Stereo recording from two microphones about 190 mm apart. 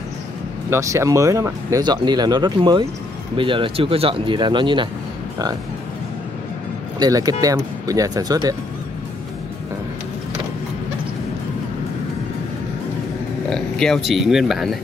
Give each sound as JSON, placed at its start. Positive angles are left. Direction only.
{"t": 0.7, "sound": "speech", "side_deg": -15}
{"t": 7.0, "sound": "speech", "side_deg": -20}
{"t": 13.5, "sound": "speech", "side_deg": 5}